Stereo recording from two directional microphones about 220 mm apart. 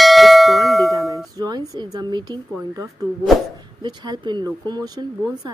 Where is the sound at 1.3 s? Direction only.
15° right (ahead or behind).